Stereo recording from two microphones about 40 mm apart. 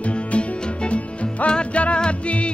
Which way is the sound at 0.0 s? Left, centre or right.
Left.